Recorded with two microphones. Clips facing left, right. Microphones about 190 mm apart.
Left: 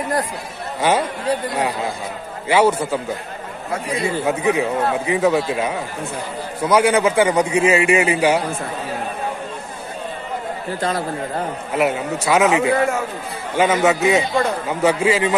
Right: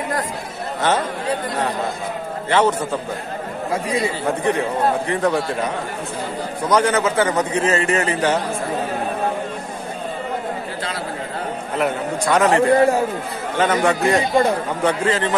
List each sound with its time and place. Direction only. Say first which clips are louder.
0.7 s a man's voice: left 2 dB; 10° left (ahead or behind)
2.5 s a man's voice: left 2 dB; 10° left (ahead or behind)
4.3 s a man's voice: left 2 dB; 5° left (ahead or behind)
6.7 s a man's voice: left 2 dB; 10° left (ahead or behind)
10.8 s a man's voice: left 5 dB; 45° left (ahead or behind)
11.7 s a man's voice: left 2 dB; 5° left (ahead or behind)
12.7 s a man's voice: right 4 dB; 35° right (ahead or behind)
13.6 s a man's voice: left 2 dB; 5° left (ahead or behind)